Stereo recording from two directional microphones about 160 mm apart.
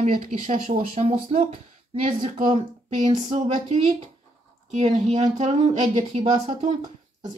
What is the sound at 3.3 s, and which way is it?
Speech, 45° right (ahead or behind).